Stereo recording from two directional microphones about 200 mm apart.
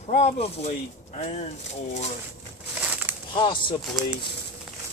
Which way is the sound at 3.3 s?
25° left (ahead or behind).